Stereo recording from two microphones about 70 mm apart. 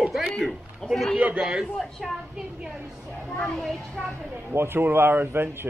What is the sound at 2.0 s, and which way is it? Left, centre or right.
Speech, centre.